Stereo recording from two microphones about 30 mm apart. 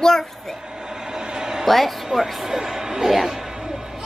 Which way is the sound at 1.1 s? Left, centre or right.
Right.